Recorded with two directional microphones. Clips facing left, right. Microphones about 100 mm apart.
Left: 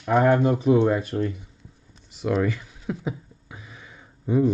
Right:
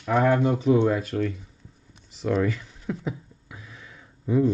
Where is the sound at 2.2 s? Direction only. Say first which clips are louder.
Left 1 dB; 10° left (ahead or behind).